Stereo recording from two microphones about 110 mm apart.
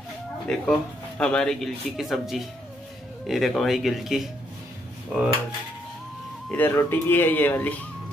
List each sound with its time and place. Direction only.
0.5 s speech: 5° left (ahead or behind)
5.1 s cutlery: 10° right (ahead or behind)
6.5 s speech: 15° left (ahead or behind)